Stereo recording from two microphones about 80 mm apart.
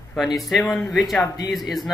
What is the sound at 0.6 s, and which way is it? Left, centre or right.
Speech, centre.